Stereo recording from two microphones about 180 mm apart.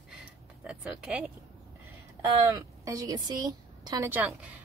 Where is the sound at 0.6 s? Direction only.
5° right (ahead or behind).